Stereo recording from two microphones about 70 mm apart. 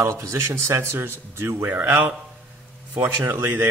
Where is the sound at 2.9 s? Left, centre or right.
Right.